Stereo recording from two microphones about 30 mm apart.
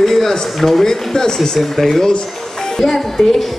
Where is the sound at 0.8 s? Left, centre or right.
Centre.